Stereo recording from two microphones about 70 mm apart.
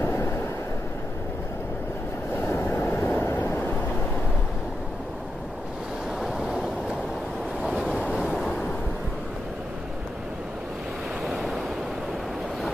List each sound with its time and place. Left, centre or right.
0.0 s waves: left
2.4 s vehicle: left
6.2 s waves: centre
7.6 s waves: centre
11.2 s waves: centre